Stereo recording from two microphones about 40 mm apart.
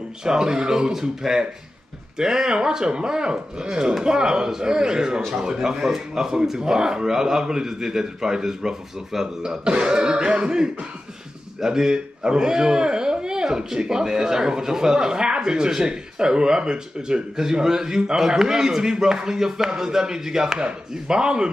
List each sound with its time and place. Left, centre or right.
0.2 s speech: centre